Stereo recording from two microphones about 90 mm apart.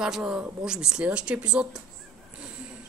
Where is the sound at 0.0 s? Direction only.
5° right (ahead or behind).